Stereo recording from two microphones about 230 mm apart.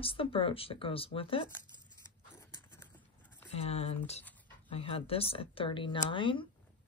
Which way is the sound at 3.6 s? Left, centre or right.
Left.